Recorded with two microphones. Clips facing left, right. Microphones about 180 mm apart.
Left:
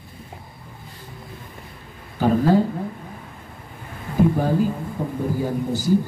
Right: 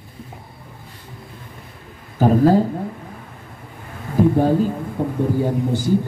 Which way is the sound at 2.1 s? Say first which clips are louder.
Right 3 dB; 40° right (ahead or behind).